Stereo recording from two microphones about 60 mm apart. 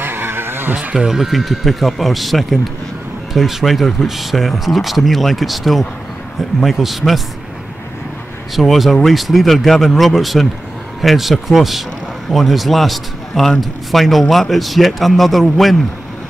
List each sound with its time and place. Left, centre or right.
0.0 s vehicle: right
0.7 s a man's voice: centre
8.5 s a man's voice: centre